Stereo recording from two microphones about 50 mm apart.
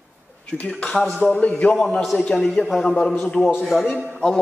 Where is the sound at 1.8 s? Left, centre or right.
Centre.